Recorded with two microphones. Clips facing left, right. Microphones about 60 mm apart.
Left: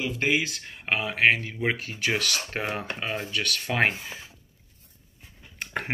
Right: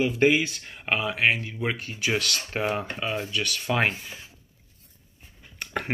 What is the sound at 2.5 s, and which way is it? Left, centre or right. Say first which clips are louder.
Speech: right 3 dB; centre.